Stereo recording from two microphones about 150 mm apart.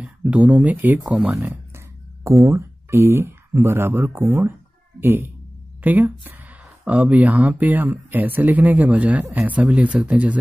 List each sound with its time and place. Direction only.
0.0 s speech: 10° right (ahead or behind)